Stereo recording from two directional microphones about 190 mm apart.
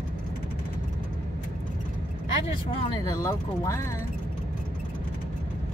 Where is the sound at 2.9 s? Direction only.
15° left (ahead or behind).